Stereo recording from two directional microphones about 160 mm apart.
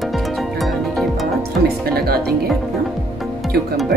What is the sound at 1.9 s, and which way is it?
Music, 75° right (ahead or behind).